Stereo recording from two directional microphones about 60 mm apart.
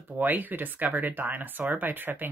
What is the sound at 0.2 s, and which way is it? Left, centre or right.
Speech, right.